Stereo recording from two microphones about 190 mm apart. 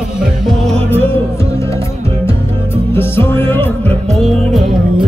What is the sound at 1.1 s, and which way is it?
Music, 15° left (ahead or behind).